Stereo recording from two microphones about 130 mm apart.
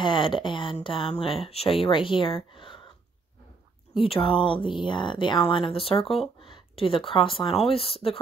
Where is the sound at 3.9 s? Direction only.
45° left (ahead or behind).